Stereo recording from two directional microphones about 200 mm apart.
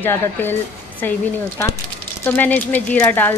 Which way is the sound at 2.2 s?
10° left (ahead or behind).